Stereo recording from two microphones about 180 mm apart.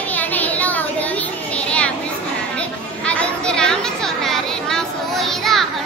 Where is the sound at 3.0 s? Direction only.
5° left (ahead or behind).